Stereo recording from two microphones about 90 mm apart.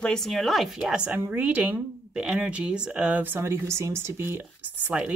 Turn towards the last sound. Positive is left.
turn(degrees=-15)  # may be behind; listen again after turning